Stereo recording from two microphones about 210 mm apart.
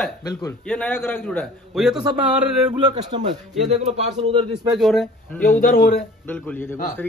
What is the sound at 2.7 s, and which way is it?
A man's voice, 25° right (ahead or behind).